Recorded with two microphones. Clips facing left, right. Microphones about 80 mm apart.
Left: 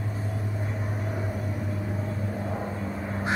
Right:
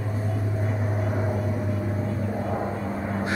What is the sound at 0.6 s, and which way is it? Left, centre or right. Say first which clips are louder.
Vehicle: right 5 dB; centre.